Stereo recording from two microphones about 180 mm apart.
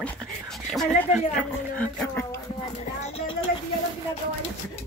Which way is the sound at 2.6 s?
35° left (ahead or behind).